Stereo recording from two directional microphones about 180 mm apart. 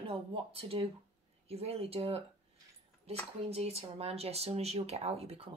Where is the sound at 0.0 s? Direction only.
30° right (ahead or behind).